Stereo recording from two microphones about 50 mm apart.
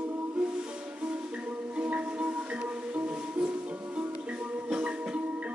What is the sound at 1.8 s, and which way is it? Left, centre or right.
Music, right.